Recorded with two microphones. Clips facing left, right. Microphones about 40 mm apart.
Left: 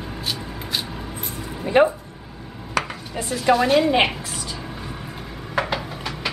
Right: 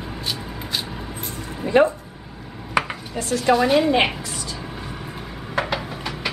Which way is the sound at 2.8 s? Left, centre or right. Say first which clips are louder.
Right 2 dB; right.